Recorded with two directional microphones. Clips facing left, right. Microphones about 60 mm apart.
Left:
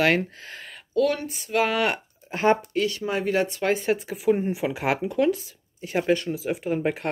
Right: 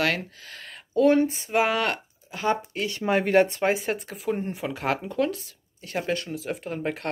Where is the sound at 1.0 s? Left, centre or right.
Right.